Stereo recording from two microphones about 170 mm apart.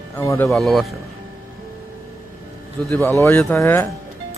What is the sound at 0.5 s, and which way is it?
Speech, centre (ahead or behind).